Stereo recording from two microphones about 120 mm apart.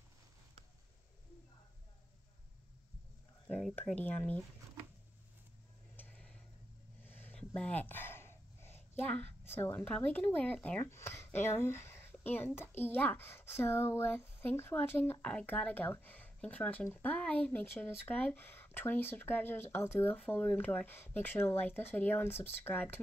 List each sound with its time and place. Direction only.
3.4 s speech: 5° left (ahead or behind)
5.9 s tick-tock: 10° left (ahead or behind)
7.1 s a sound: 15° left (ahead or behind)
9.1 s speech: 20° left (ahead or behind)